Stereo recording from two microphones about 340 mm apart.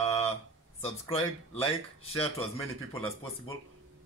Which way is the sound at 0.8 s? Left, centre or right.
Centre.